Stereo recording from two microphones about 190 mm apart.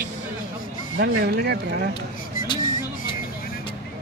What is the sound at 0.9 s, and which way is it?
Speech, 55° right (ahead or behind).